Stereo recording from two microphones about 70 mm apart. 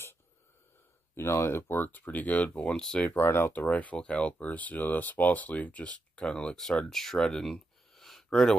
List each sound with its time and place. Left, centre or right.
1.1 s speech: left; by 2.8 s centre
3.2 s speech: left
3.5 s speech: left; by 8.5 s centre